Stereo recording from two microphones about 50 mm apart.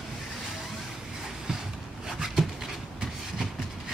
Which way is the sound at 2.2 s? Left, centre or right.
Centre.